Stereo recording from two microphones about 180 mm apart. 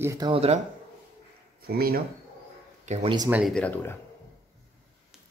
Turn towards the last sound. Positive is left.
turn(degrees=10)  # may be behind; listen again after turning